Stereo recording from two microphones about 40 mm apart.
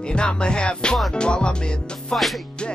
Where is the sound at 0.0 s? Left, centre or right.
Left.